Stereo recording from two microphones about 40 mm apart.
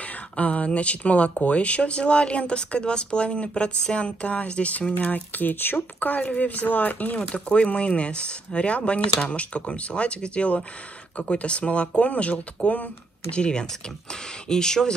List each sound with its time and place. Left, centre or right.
0.4 s speech: left
5.9 s speech: left
7.2 s speech: left